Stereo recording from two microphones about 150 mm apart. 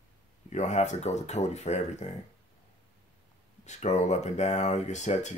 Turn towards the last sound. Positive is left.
turn(degrees=50)  # may be behind; listen again after turning